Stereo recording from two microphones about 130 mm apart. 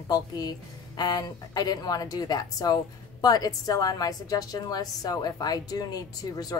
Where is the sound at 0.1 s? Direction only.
30° left (ahead or behind).